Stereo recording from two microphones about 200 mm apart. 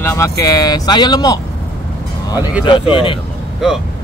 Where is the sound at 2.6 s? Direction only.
25° left (ahead or behind).